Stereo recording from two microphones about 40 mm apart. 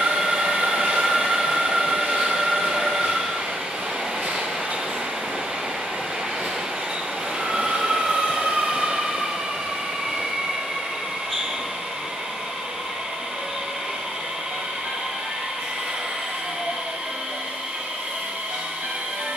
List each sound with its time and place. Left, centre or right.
0.0 s train: centre
7.4 s train: centre